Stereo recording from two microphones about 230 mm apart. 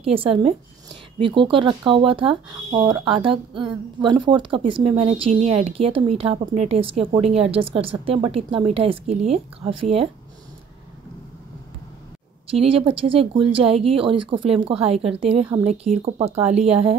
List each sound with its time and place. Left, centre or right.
0.0 s speech: right
12.4 s speech: right